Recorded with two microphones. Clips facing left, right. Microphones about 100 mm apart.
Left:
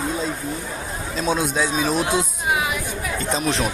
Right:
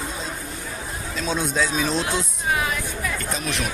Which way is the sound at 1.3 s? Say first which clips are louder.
Left 2 dB; 15° left (ahead or behind).